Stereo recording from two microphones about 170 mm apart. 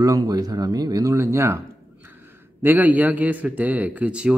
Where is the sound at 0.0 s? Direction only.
20° right (ahead or behind).